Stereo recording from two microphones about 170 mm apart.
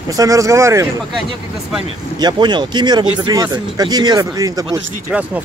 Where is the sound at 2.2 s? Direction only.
25° right (ahead or behind).